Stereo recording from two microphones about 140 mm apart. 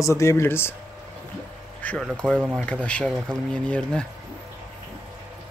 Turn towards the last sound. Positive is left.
turn(degrees=5)  # may be behind; listen again after turning